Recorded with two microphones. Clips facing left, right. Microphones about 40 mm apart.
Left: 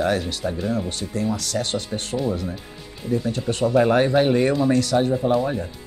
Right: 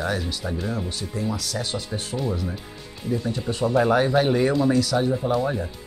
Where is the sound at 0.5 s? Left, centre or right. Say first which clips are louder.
Left 4 dB; centre.